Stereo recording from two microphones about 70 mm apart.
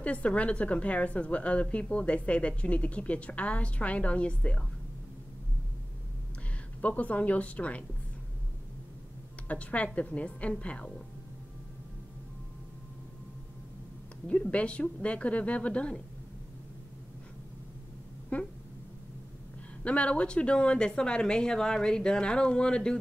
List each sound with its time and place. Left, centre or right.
0.0 s a woman's voice: centre
6.8 s a woman's voice: left
9.5 s a woman's voice: centre
14.2 s a woman's voice: centre
18.3 s a sound: left
19.8 s a woman's voice: centre